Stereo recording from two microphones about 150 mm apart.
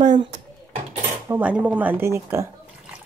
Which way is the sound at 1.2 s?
10° right (ahead or behind).